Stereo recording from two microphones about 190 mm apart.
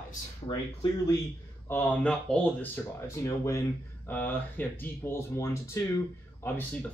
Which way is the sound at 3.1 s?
15° left (ahead or behind).